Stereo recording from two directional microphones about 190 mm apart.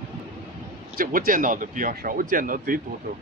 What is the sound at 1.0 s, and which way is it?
Speech, 45° right (ahead or behind).